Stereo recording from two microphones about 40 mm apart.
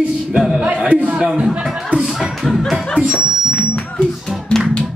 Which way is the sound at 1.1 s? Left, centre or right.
Centre.